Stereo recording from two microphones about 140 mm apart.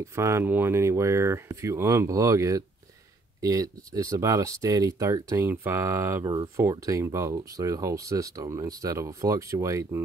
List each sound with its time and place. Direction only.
0.0 s speech: 20° right (ahead or behind)